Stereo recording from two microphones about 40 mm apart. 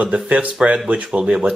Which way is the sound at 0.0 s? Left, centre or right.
Right.